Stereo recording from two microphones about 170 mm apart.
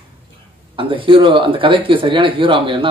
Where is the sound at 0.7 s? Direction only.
30° right (ahead or behind).